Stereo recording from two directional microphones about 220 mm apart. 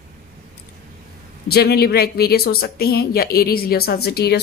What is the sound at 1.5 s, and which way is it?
A woman's voice, 45° left (ahead or behind).